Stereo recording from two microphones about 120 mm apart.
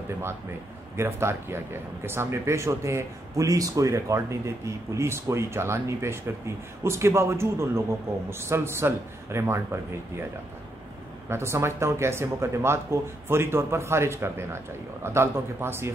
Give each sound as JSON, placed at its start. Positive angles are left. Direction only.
{"t": 0.9, "sound": "speech", "side_deg": -20}
{"t": 11.2, "sound": "speech", "side_deg": -20}